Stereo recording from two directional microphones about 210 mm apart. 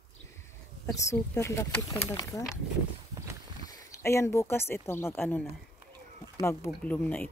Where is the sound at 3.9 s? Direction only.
15° left (ahead or behind).